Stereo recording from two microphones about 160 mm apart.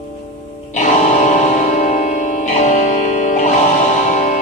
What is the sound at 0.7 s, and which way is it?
Music, 45° left (ahead or behind).